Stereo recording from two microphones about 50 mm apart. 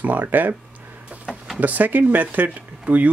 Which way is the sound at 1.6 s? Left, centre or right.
Right.